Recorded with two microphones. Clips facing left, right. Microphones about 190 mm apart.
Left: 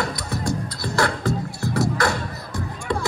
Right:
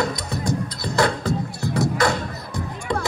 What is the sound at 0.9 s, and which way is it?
Music, 20° right (ahead or behind).